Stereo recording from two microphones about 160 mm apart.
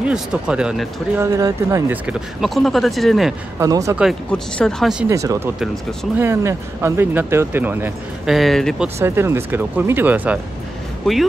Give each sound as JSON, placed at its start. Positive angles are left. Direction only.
{"t": 0.0, "sound": "speech", "side_deg": -5}
{"t": 1.2, "sound": "speech", "side_deg": -20}
{"t": 2.0, "sound": "speech", "side_deg": -5}
{"t": 3.5, "sound": "speech", "side_deg": -20}
{"t": 3.9, "sound": "speech", "side_deg": -5}
{"t": 5.1, "sound": "speech", "side_deg": -20}
{"t": 8.3, "sound": "speech", "side_deg": 0}
{"t": 8.8, "sound": "speech", "side_deg": -15}